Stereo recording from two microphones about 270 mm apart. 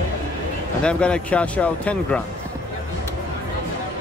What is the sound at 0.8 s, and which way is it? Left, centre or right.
Speech, centre.